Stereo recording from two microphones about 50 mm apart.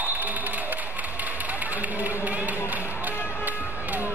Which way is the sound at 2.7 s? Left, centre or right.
Right.